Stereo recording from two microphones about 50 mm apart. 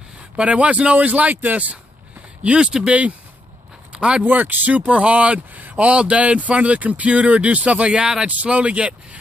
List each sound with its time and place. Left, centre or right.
0.4 s speech: right
2.4 s speech: centre
3.9 s a sound: right
4.2 s speech: right
7.9 s speech: centre
8.3 s speech: right